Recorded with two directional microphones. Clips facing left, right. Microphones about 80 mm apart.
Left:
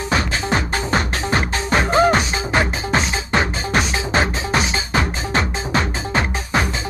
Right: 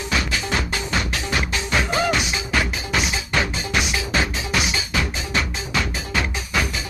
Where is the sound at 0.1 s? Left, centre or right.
Left.